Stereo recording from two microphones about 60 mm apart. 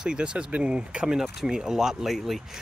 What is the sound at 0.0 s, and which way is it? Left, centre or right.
Speech, centre.